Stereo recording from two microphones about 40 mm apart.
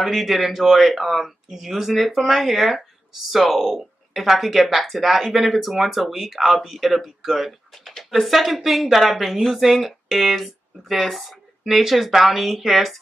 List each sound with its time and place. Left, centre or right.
0.0 s speech: centre